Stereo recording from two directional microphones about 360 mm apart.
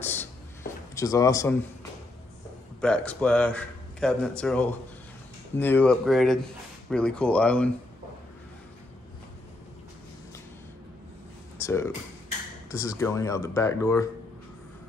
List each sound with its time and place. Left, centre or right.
0.0 s a sound: centre
0.9 s speech: centre
2.8 s a man's voice: centre
11.6 s speech: centre